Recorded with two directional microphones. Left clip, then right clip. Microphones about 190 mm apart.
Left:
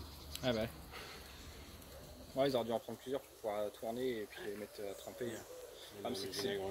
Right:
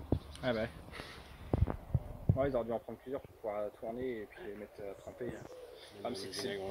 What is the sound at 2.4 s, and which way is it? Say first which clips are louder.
Speech: even; 15° right (ahead or behind).